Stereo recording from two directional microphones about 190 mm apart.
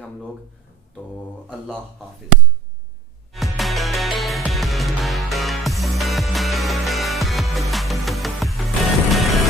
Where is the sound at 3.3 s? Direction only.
Centre (ahead or behind).